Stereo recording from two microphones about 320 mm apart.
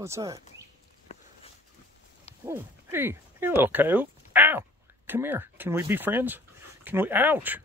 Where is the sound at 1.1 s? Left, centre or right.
Centre.